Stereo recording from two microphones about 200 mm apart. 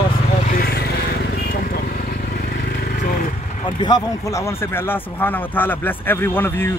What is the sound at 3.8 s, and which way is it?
A man's voice, 20° left (ahead or behind).